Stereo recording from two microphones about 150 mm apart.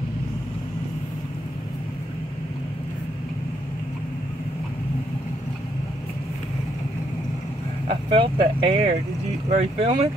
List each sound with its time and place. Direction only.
7.9 s speech: 35° right (ahead or behind)